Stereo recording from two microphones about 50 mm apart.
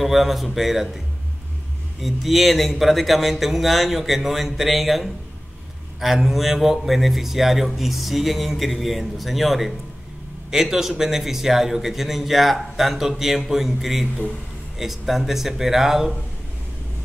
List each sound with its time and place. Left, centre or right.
0.0 s a man's voice: centre
2.0 s a man's voice: centre